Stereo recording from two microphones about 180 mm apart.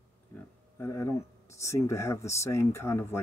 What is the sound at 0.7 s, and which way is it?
Speech, 15° left (ahead or behind).